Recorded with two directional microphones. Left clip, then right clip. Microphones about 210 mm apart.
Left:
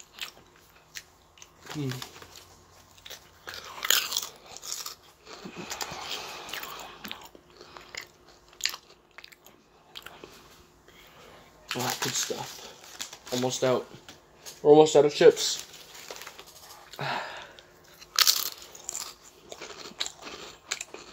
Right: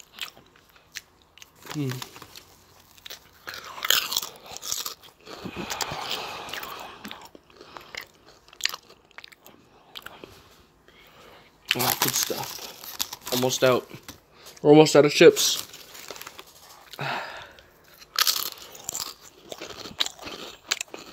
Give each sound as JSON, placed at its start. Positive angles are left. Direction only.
{"t": 0.2, "sound": "biting", "side_deg": -30}
{"t": 0.9, "sound": "chewing", "side_deg": -40}
{"t": 3.0, "sound": "crunch", "side_deg": -25}
{"t": 8.5, "sound": "biting", "side_deg": -25}
{"t": 11.8, "sound": "crumpling", "side_deg": -45}
{"t": 13.5, "sound": "speech", "side_deg": -30}
{"t": 14.6, "sound": "crumpling", "side_deg": -40}
{"t": 16.9, "sound": "crunch", "side_deg": -30}